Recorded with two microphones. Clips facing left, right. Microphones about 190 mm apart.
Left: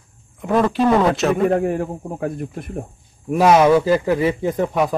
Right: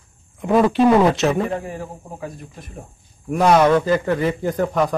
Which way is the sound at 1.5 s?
60° left (ahead or behind).